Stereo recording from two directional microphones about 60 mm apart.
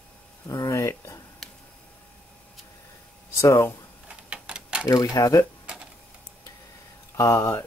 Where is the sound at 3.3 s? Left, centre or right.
Left.